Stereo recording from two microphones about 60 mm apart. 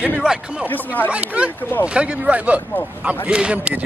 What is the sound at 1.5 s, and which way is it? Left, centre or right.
Speech, left.